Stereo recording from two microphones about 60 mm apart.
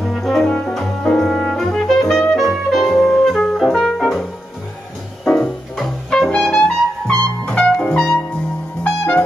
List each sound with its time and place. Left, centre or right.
0.0 s brass instrument: centre
0.5 s music: centre